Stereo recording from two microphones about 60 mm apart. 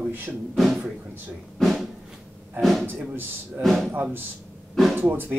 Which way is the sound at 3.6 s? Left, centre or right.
Centre.